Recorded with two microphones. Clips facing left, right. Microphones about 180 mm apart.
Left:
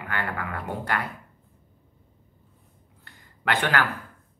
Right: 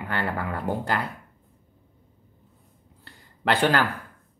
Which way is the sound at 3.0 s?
35° right (ahead or behind).